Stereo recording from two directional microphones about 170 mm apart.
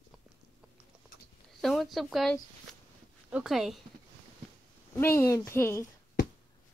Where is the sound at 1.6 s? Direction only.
Centre (ahead or behind).